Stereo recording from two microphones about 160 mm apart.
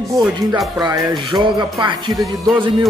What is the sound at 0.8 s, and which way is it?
Speech, 25° right (ahead or behind).